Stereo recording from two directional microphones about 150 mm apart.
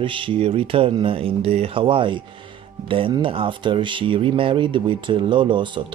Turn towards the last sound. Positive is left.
turn(degrees=-30)  # may be behind; listen again after turning